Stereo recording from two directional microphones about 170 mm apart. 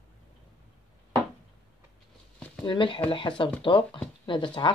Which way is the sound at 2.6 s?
30° left (ahead or behind).